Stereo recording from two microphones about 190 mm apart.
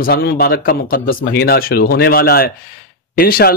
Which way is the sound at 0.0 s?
50° left (ahead or behind).